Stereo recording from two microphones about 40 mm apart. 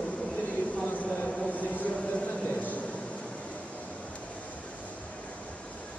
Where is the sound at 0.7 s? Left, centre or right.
Left.